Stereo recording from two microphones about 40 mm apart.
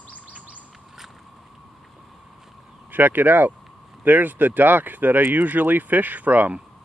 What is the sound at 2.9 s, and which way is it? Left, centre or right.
Speech, right.